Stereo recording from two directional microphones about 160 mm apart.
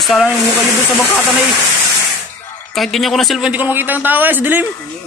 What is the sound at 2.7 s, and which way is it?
A man's voice, centre (ahead or behind).